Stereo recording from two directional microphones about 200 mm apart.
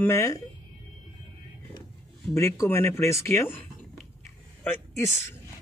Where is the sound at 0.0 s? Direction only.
15° left (ahead or behind).